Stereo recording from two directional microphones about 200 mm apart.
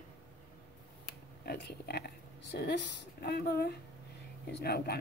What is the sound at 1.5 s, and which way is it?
A woman's voice, 55° left (ahead or behind).